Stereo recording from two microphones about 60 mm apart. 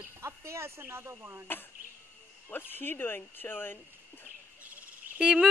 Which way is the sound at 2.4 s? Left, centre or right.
Left.